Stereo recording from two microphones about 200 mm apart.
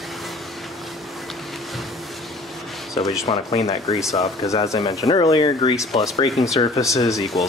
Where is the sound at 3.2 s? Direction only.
30° left (ahead or behind).